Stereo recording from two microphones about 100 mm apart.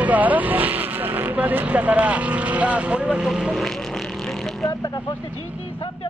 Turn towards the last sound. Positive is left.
turn(degrees=40)  # may be behind; listen again after turning